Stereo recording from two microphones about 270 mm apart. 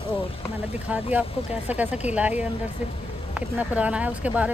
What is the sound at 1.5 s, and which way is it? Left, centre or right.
Speech, centre.